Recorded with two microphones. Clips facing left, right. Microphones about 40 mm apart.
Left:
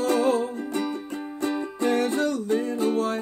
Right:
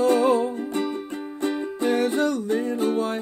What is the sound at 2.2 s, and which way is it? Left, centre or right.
Music, right.